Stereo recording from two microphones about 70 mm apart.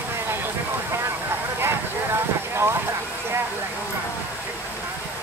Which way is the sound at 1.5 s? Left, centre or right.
Right.